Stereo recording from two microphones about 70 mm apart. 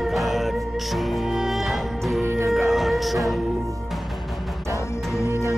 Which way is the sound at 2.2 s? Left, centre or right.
Right.